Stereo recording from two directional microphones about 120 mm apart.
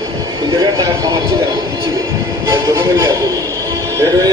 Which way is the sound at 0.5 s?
30° right (ahead or behind).